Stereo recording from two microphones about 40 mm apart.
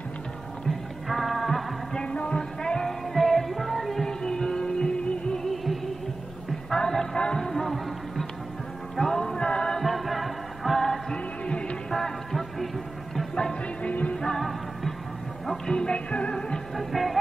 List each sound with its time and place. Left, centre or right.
0.7 s music: centre
2.0 s music: left
3.1 s music: centre; by 9.8 s left
9.8 s music: centre
10.8 s music: centre
11.4 s music: left
11.9 s music: centre
13.3 s music: centre
13.8 s music: left
14.1 s music: centre
14.4 s music: centre
15.7 s music: left
16.7 s music: centre